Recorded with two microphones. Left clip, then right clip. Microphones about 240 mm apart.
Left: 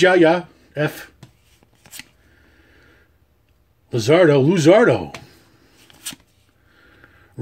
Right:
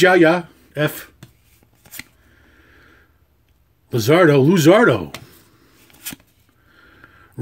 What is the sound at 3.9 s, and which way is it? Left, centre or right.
Speech, centre.